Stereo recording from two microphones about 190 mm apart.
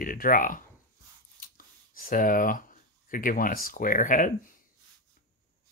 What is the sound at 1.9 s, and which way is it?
Speech, 45° left (ahead or behind).